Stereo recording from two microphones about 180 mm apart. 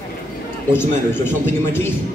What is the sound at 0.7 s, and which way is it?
A man's voice, 15° left (ahead or behind).